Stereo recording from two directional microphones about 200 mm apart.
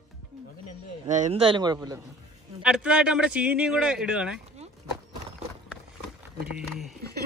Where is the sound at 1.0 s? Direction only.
40° right (ahead or behind); by 1.8 s 20° right (ahead or behind).